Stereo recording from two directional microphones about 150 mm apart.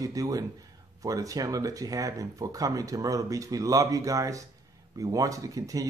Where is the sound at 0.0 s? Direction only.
25° right (ahead or behind).